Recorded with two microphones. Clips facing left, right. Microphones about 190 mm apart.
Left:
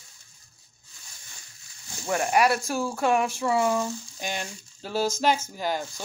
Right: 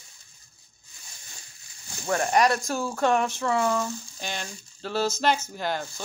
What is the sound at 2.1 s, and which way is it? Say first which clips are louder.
Speech: even; 10° left (ahead or behind).